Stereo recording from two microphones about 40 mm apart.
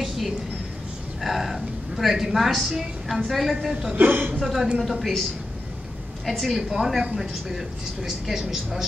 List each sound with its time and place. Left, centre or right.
1.2 s a sound: centre
3.3 s a woman's voice: centre
3.9 s a woman's voice: right
4.4 s a woman's voice: centre
6.2 s a woman's voice: centre
6.7 s a woman's voice: centre